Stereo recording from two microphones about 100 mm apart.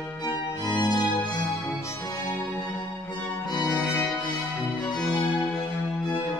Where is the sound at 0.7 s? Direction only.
45° left (ahead or behind).